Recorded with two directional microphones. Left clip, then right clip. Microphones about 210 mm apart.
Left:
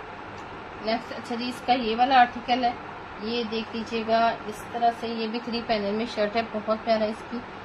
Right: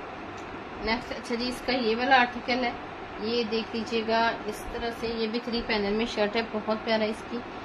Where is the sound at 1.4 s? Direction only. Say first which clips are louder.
Left 4 dB; 25° right (ahead or behind).